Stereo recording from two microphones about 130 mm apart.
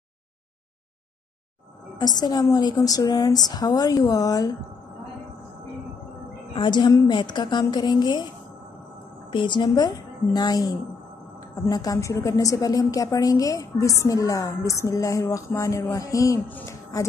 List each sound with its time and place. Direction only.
2.0 s a woman's voice: 30° left (ahead or behind)
6.5 s a woman's voice: 35° left (ahead or behind)
9.3 s a woman's voice: 35° left (ahead or behind)
16.4 s speech: 15° left (ahead or behind)